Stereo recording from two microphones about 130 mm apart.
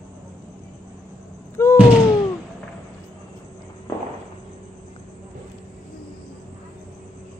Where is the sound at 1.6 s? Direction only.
20° left (ahead or behind).